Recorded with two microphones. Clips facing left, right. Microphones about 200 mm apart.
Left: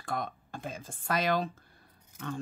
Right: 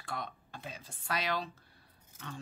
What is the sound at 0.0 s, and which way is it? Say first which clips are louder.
Speech: left 6 dB; 50° left (ahead or behind).